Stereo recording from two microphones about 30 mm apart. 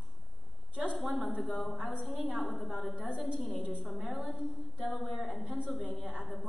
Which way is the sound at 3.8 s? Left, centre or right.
Centre.